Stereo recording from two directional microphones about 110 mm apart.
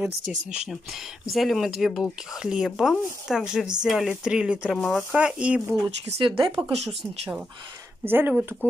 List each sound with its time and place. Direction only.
0.4 s speech: 90° right
1.3 s speech: centre (ahead or behind)
4.7 s speech: 15° left (ahead or behind)
5.1 s speech: 10° right (ahead or behind)
6.7 s speech: 70° right (ahead or behind)
8.0 s speech: 20° right (ahead or behind)